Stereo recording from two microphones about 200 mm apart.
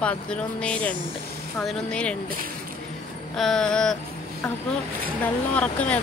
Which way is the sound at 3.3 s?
Centre (ahead or behind).